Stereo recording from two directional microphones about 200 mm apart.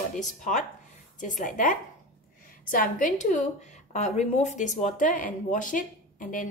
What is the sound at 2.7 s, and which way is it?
Speech, 40° left (ahead or behind).